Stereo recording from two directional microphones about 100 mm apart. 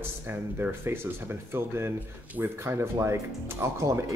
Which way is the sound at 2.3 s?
25° right (ahead or behind).